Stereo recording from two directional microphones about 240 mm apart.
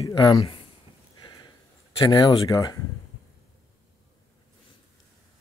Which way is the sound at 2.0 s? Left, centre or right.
Centre.